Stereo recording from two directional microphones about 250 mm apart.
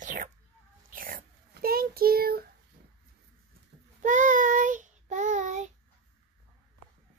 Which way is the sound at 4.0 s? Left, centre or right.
Right.